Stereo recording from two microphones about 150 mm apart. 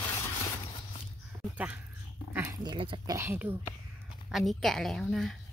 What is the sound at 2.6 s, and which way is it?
Speech, 30° right (ahead or behind).